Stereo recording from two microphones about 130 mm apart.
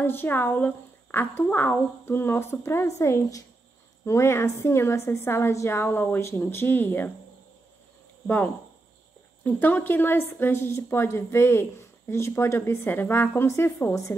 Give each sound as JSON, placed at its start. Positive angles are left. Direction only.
{"t": 0.0, "sound": "a woman's voice", "side_deg": 15}
{"t": 9.4, "sound": "a woman's voice", "side_deg": 15}